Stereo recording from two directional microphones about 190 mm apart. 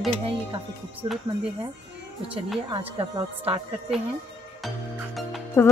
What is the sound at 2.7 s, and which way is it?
Speech, 25° right (ahead or behind).